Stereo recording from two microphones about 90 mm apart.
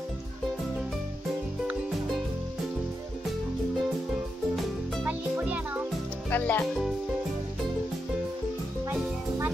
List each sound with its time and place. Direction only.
5.0 s music: 20° right (ahead or behind)
6.3 s speech: 20° left (ahead or behind)
6.6 s speech: centre (ahead or behind)